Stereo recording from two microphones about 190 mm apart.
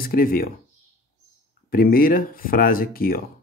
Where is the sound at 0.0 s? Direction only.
50° left (ahead or behind).